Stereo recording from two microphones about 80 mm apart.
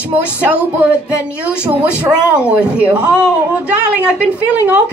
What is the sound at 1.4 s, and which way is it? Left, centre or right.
Music, centre.